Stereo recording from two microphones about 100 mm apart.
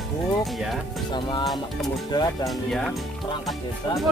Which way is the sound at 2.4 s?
5° left (ahead or behind).